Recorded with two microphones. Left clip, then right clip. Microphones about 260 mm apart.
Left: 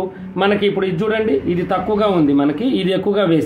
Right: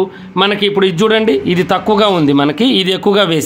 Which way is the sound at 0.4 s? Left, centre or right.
Right.